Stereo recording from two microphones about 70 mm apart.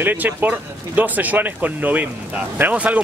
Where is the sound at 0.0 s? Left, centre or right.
Right.